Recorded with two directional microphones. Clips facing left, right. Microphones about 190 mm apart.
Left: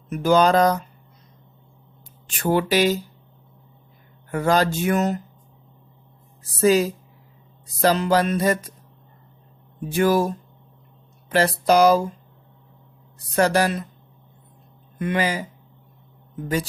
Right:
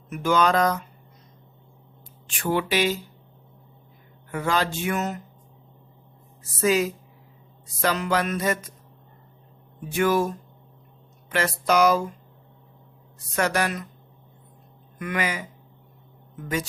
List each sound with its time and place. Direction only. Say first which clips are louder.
0.1 s music: left 4 dB; 35° left (ahead or behind)
2.2 s music: left 4 dB; 40° left (ahead or behind)
4.3 s music: left 5 dB; 40° left (ahead or behind)
6.6 s music: left 4 dB; 35° left (ahead or behind)
9.8 s music: left 3 dB; 35° left (ahead or behind)
13.3 s music: left 5 dB; 35° left (ahead or behind)
15.0 s music: left 5 dB; 30° left (ahead or behind)